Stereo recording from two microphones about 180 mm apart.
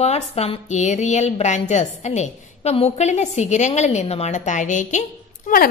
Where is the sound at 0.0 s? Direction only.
35° left (ahead or behind).